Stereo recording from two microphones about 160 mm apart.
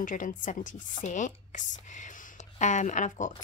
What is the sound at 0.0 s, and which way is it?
Speech, 55° left (ahead or behind).